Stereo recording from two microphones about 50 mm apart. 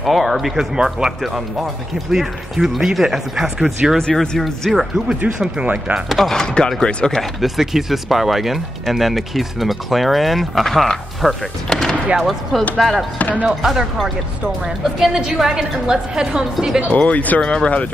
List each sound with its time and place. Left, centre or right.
0.0 s speech: centre
4.1 s speech: centre
4.4 s speech: centre
6.0 s speech: centre
7.2 s speech: centre
16.9 s speech: left
17.4 s speech: centre